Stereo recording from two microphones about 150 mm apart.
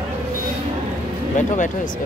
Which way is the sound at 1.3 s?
55° left (ahead or behind).